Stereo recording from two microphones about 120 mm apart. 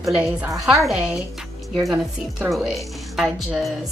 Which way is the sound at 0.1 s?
5° right (ahead or behind).